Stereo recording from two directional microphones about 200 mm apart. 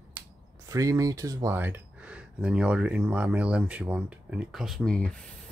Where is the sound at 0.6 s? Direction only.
15° right (ahead or behind); by 5.5 s 5° left (ahead or behind).